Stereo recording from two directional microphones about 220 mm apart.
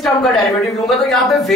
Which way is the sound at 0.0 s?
Centre (ahead or behind).